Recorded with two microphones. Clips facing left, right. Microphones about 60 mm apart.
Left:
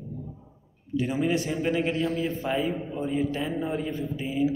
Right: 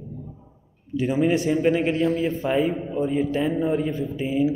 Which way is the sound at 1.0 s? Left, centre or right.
Right.